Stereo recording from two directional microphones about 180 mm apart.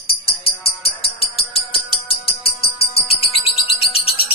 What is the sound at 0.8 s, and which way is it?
Music, 30° left (ahead or behind).